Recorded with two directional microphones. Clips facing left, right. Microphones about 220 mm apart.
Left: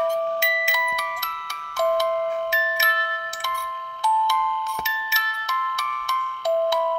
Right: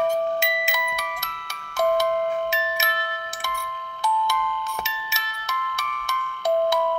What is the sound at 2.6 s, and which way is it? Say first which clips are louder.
Music: right 1 dB; 20° right (ahead or behind).